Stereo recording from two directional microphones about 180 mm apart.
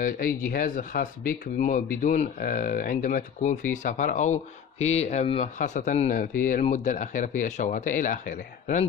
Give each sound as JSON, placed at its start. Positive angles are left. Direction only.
{"t": 0.0, "sound": "speech", "side_deg": 50}